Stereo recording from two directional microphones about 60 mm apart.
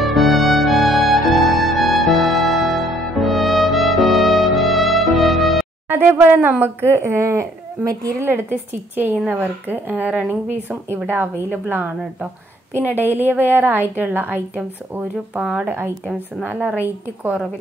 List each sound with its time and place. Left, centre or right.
0.0 s music: centre
5.9 s speech: right
7.9 s a woman's voice: right
8.2 s a woman's voice: right
16.4 s speech: right